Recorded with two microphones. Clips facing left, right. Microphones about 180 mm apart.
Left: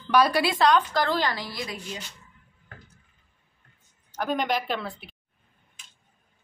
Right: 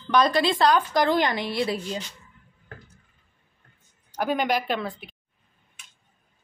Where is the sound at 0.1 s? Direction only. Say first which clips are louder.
Right 1 dB; 10° left (ahead or behind).